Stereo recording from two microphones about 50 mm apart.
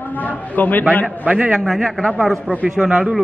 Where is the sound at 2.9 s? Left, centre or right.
Right.